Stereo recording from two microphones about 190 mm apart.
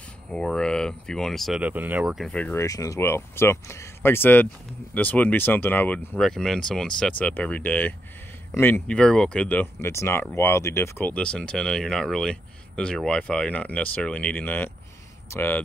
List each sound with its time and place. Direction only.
0.3 s speech: 5° left (ahead or behind)